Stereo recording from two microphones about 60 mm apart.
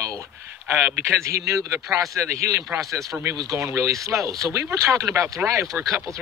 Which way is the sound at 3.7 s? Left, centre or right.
Right.